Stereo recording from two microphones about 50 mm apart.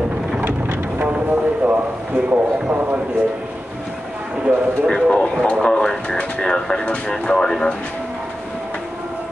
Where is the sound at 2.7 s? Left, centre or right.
Right.